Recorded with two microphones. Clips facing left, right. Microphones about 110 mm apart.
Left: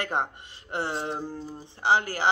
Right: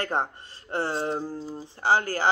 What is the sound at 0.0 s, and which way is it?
Speech, 15° left (ahead or behind).